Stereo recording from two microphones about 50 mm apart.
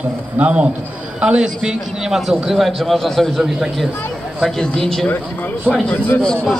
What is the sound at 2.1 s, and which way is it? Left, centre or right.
A man's voice, centre.